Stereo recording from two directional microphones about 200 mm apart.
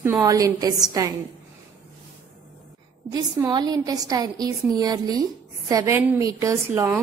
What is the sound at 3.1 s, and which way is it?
A woman's voice, 20° right (ahead or behind).